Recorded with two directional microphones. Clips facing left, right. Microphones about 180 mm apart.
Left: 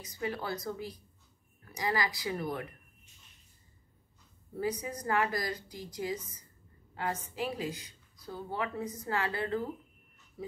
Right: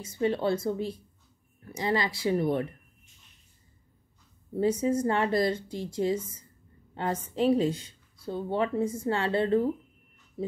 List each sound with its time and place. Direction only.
0.0 s speech: 25° right (ahead or behind)
4.6 s speech: 25° right (ahead or behind)